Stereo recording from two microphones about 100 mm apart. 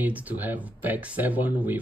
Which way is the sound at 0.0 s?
15° right (ahead or behind).